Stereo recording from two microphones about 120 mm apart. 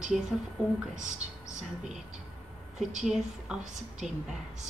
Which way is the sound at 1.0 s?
85° right.